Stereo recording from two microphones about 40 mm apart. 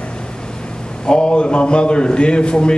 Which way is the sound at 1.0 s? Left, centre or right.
Left.